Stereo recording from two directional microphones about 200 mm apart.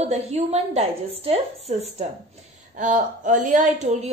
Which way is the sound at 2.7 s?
40° right (ahead or behind).